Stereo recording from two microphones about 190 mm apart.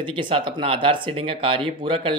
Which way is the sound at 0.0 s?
25° right (ahead or behind).